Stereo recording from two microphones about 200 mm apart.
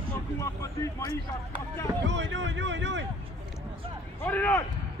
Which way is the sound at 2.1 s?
65° right (ahead or behind).